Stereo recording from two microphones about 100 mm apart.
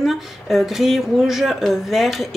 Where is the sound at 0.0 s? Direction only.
Centre (ahead or behind).